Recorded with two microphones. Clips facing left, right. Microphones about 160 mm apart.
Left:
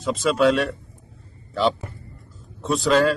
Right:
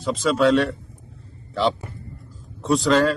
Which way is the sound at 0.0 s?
Centre (ahead or behind).